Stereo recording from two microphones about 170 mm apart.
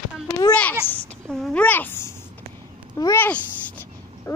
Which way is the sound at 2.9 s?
20° left (ahead or behind).